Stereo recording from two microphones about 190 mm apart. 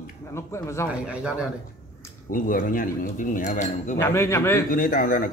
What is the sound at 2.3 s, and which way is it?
Speech, 45° left (ahead or behind).